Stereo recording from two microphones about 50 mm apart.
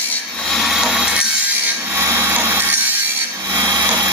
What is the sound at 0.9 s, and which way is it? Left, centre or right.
Music, centre.